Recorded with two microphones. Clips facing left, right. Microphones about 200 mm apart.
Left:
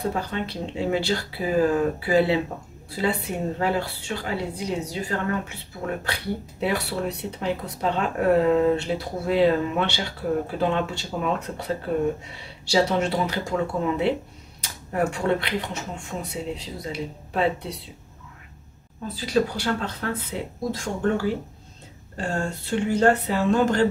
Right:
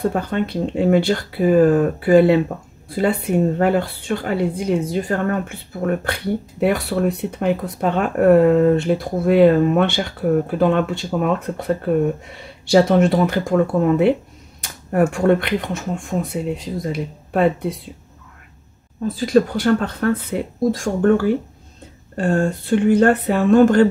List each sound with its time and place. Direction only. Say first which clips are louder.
0.0 s speech: right 7 dB; 55° right (ahead or behind)
6.6 s speech: right 8 dB; 55° right (ahead or behind)
19.1 s speech: right 7 dB; 50° right (ahead or behind)